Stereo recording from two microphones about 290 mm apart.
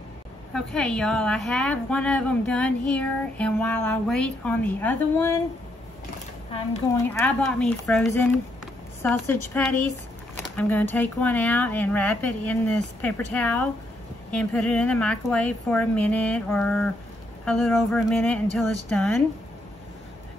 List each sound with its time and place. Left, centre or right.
0.5 s a woman's voice: centre
7.0 s a woman's voice: centre